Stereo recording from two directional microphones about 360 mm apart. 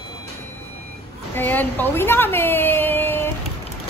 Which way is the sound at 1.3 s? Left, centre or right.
Centre.